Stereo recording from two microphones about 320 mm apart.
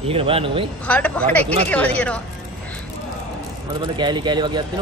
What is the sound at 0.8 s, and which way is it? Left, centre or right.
Speech, centre.